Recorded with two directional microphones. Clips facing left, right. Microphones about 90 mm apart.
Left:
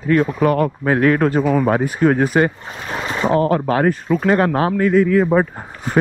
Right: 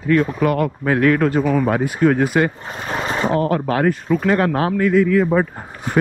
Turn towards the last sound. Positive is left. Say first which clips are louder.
# left 1 dB
turn(degrees=30)  # may be behind; listen again after turning